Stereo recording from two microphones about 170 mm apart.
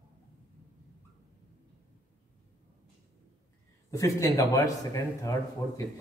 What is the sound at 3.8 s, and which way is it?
A man's voice, 20° left (ahead or behind).